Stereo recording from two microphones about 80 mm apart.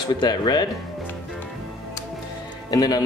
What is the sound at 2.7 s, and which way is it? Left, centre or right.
Speech, left.